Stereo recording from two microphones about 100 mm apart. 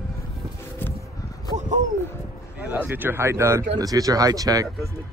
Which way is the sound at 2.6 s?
15° right (ahead or behind).